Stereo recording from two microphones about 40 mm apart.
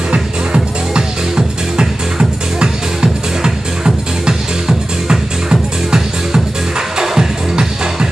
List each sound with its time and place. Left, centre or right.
0.1 s music: right